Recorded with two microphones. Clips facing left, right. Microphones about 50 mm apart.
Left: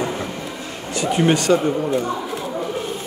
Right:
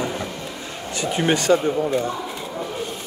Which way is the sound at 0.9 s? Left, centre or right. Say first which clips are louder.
Left 3 dB; right.